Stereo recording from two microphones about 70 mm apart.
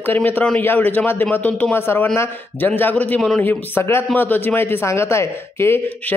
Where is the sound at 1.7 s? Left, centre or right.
Left.